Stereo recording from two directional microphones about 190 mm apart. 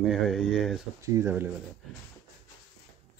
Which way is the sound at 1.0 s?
15° right (ahead or behind).